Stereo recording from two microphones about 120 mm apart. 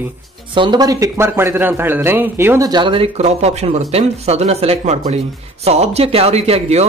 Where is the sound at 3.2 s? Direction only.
65° right (ahead or behind).